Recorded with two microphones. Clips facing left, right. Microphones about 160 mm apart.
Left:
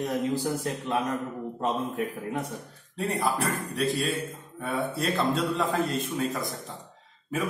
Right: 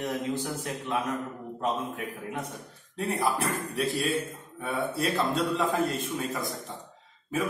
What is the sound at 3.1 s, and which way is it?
A man's voice, centre (ahead or behind).